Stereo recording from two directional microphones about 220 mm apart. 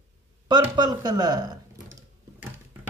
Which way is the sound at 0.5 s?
20° right (ahead or behind).